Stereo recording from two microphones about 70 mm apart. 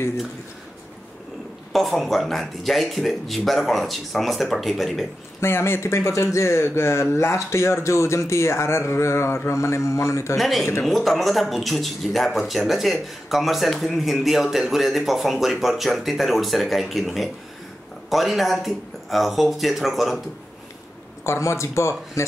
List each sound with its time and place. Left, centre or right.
1.7 s speech: centre
5.4 s speech: left
10.3 s speech: centre
21.2 s speech: left